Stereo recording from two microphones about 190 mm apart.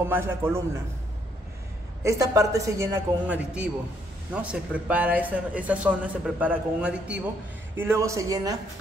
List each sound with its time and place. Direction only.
0.0 s a man's voice: 10° right (ahead or behind)
2.0 s a man's voice: 15° right (ahead or behind)